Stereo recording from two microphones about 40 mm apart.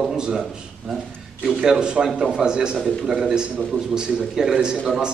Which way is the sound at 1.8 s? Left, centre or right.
Right.